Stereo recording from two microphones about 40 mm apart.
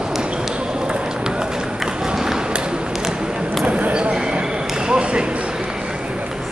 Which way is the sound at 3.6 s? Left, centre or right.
Right.